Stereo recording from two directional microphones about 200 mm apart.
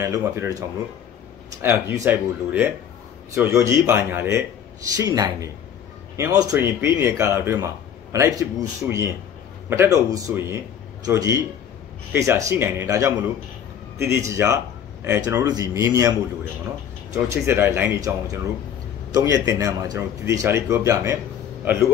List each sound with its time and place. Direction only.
0.0 s a man's voice: 15° right (ahead or behind)